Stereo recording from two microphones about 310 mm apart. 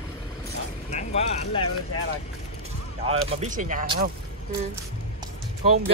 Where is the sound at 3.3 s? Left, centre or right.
Right.